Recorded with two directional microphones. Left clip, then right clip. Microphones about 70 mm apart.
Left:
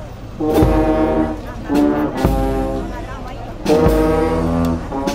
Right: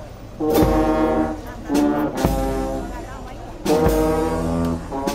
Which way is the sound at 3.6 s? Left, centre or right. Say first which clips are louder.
Left 4 dB; right.